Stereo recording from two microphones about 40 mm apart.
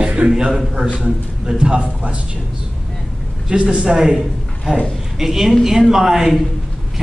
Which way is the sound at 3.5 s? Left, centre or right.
Right.